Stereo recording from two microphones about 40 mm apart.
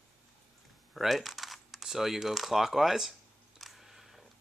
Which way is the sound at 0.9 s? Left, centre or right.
Centre.